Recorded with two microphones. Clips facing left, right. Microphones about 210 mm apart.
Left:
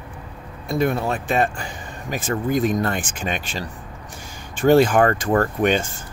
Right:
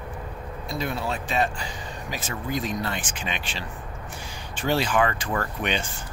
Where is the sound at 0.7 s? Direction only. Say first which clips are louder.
Left 8 dB; 50° left (ahead or behind).